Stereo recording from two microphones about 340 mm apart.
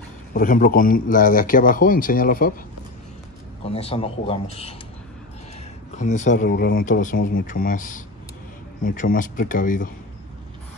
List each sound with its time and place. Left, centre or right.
0.3 s a man's voice: left
3.6 s speech: centre
5.9 s a man's voice: left